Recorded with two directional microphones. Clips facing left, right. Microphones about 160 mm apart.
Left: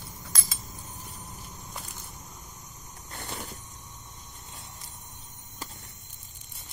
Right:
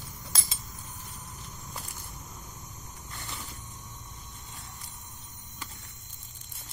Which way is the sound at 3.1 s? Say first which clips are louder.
Left 5 dB; 55° left (ahead or behind).